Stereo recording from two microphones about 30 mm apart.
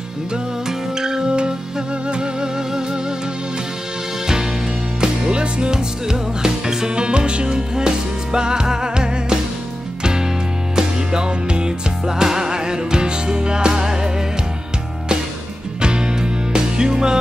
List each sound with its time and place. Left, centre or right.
0.7 s music: centre
2.0 s music: right
5.0 s music: right
7.0 s music: right
10.8 s music: right
12.1 s music: centre
15.8 s music: right